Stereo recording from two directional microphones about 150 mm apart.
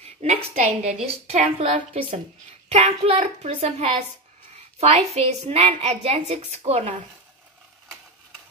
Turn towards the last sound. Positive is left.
turn(degrees=-40)  # may be behind; listen again after turning